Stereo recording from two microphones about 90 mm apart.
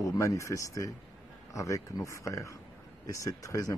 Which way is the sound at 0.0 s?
40° left (ahead or behind).